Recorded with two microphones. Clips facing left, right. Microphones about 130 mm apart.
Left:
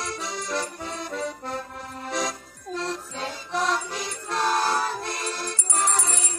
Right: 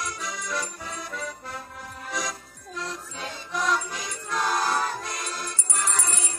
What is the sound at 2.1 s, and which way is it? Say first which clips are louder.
Music: left 4 dB; 30° left (ahead or behind).